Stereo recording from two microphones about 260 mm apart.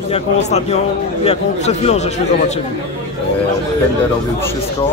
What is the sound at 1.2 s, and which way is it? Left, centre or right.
Speech, left.